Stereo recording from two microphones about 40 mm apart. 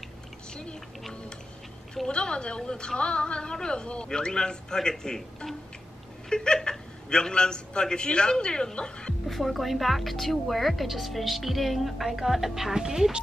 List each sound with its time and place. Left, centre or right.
2.0 s a man's voice: left
9.3 s speech: centre